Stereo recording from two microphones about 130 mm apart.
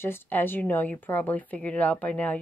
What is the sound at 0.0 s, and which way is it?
Speech, 15° left (ahead or behind).